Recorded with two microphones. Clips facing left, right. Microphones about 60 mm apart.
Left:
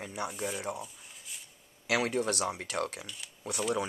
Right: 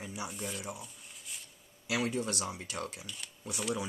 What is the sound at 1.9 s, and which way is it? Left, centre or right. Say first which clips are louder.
Speech: left 4 dB; left.